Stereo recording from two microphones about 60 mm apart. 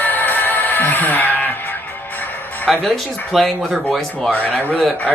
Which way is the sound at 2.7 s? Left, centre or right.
Centre.